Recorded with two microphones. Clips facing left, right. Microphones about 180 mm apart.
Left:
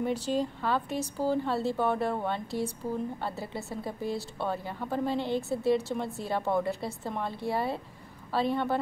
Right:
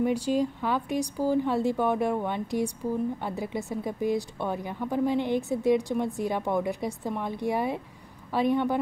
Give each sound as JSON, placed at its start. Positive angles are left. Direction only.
{"t": 0.0, "sound": "a woman's voice", "side_deg": -10}